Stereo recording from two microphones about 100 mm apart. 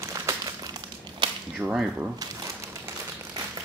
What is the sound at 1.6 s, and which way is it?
Speech, 10° right (ahead or behind).